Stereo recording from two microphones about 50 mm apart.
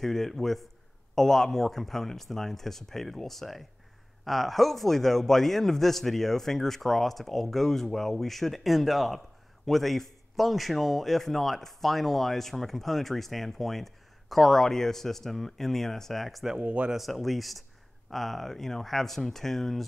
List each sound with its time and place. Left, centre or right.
0.0 s a man's voice: centre
16.6 s speech: right
16.9 s a man's voice: centre